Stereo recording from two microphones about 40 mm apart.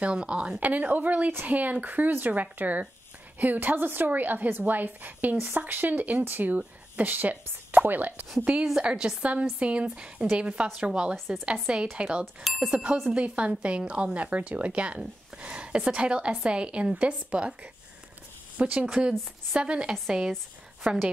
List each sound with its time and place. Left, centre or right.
0.0 s speech: right
0.6 s a woman's voice: right
8.5 s speech: right
9.2 s speech: right
13.1 s speech: right
18.6 s a woman's voice: right
19.9 s speech: centre
20.9 s speech: right